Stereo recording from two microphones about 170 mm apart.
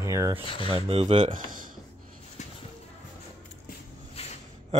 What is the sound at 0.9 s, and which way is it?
Speech, 35° right (ahead or behind).